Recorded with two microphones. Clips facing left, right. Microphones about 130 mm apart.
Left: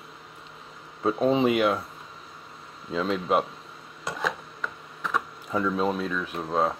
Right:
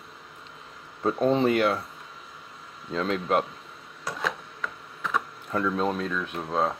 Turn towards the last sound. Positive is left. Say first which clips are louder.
# left 1 dB
turn(degrees=0)  # may be behind; listen again after turning